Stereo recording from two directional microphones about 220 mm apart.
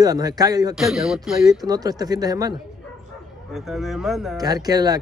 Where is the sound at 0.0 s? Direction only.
15° right (ahead or behind).